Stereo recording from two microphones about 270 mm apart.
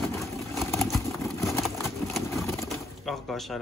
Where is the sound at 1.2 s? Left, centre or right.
Centre.